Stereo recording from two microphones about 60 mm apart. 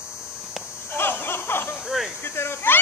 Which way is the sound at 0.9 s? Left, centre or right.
Left.